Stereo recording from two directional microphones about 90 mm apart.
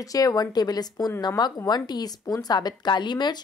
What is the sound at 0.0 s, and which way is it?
A woman's voice, 40° left (ahead or behind).